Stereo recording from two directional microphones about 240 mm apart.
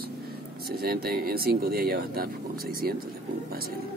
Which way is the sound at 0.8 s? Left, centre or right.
Right.